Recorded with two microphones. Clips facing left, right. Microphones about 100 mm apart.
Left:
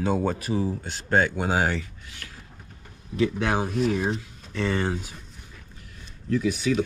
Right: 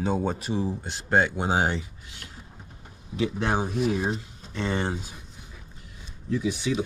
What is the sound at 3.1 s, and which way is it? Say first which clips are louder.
Speech: left 2 dB; 10° right (ahead or behind).